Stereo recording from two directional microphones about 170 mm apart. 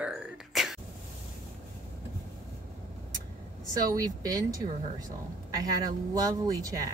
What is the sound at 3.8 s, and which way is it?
Speech, 20° right (ahead or behind).